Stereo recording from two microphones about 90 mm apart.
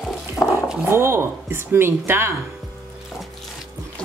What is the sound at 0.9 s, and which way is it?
A woman's voice, 25° right (ahead or behind).